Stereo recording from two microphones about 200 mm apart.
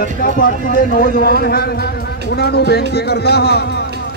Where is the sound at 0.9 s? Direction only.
45° left (ahead or behind).